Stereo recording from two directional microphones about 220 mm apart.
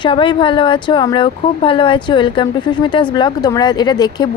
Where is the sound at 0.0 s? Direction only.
20° left (ahead or behind).